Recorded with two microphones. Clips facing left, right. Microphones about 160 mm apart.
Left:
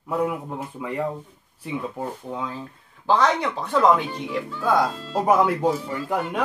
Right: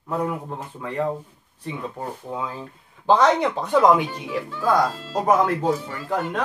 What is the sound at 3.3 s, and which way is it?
Speech, 20° right (ahead or behind).